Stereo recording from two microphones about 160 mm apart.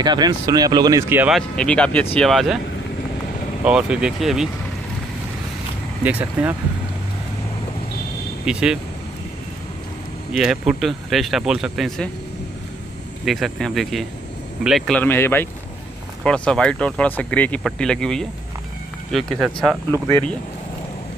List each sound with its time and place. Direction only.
0.0 s speech: 25° right (ahead or behind)
1.3 s speech: 5° left (ahead or behind)
3.6 s speech: 5° right (ahead or behind)
6.0 s speech: 10° right (ahead or behind)
8.5 s speech: 5° right (ahead or behind)
10.3 s speech: 5° right (ahead or behind)
13.2 s speech: centre (ahead or behind)
15.0 s speech: 15° left (ahead or behind)